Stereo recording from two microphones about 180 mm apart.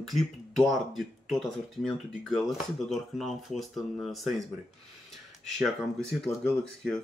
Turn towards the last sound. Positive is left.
turn(degrees=5)  # may be behind; listen again after turning